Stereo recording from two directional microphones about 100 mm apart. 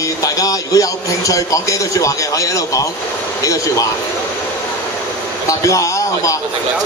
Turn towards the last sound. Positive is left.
turn(degrees=35)  # may be behind; listen again after turning